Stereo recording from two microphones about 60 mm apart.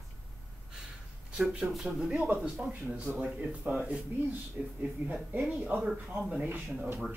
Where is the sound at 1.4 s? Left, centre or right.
Centre.